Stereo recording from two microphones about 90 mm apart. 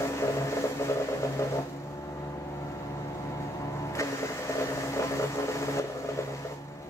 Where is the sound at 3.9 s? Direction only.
35° left (ahead or behind).